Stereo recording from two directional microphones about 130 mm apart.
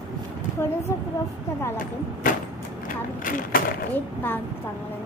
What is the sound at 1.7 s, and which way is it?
Speech, 90° left.